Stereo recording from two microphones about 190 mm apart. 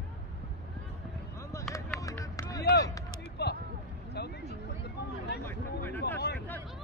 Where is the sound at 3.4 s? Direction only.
60° left (ahead or behind).